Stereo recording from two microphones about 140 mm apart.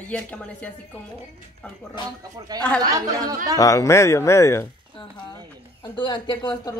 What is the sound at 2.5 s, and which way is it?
Speech, 25° right (ahead or behind).